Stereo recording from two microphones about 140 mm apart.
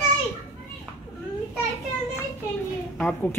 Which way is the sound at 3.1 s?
10° left (ahead or behind).